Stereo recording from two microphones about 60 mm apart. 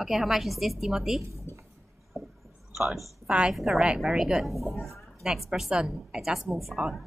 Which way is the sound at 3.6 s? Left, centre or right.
Centre.